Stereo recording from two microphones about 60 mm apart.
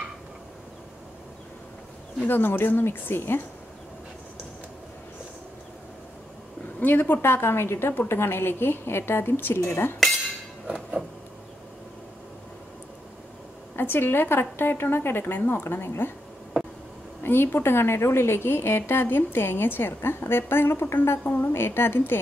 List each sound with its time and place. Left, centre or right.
2.2 s a woman's voice: left
6.8 s a woman's voice: left
10.0 s cutlery: centre
13.7 s a woman's voice: left
17.2 s a woman's voice: left
21.2 s a woman's voice: left